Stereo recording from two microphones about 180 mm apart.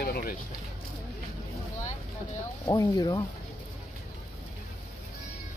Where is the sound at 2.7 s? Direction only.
20° left (ahead or behind).